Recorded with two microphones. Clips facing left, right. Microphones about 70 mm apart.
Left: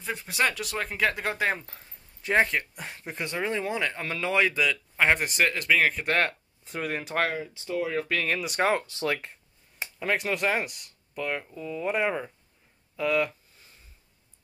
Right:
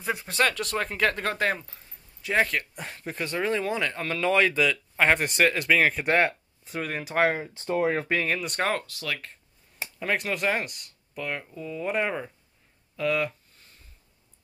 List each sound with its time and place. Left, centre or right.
0.0 s speech: centre
0.3 s speech: centre
2.2 s speech: left
2.9 s speech: centre
6.6 s speech: centre
7.2 s speech: right
8.0 s speech: right
8.3 s speech: centre
8.8 s speech: left
9.9 s speech: centre
12.9 s a sound: centre